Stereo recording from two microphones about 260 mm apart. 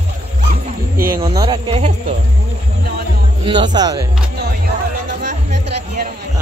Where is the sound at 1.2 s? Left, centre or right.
Centre.